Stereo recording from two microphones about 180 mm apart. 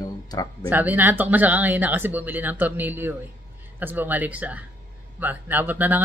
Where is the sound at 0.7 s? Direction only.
10° right (ahead or behind).